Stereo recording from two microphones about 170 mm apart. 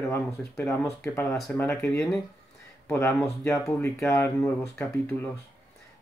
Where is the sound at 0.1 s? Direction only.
15° left (ahead or behind).